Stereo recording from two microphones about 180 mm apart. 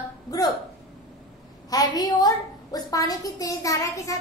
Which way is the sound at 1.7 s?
20° left (ahead or behind).